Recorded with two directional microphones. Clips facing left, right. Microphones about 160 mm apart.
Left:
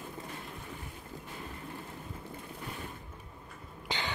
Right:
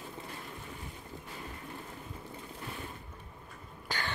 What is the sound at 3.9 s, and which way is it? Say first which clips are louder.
Throat clearing: left 1 dB; 20° left (ahead or behind).